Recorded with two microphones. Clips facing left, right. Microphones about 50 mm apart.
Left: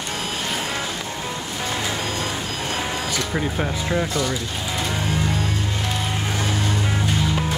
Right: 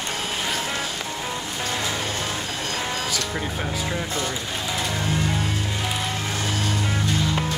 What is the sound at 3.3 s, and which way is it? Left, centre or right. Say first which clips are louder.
Speech: left 3 dB; centre.